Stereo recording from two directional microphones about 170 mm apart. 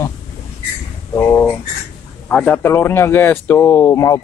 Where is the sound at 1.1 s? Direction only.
15° left (ahead or behind).